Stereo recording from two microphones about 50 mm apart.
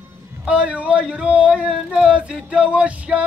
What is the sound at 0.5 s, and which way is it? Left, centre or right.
Male singing, right.